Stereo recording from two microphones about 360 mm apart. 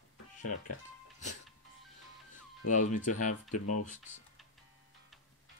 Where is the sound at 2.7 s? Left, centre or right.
Left.